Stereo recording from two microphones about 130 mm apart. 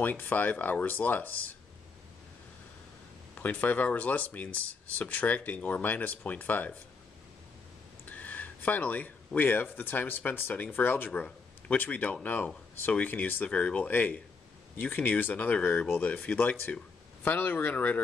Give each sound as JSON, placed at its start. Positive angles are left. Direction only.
{"t": 0.0, "sound": "speech", "side_deg": 15}
{"t": 3.3, "sound": "speech", "side_deg": 10}
{"t": 8.0, "sound": "speech", "side_deg": 15}